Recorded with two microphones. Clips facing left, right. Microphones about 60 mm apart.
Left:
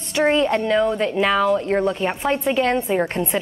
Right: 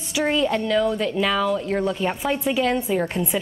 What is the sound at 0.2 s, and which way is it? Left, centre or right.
Speech, left.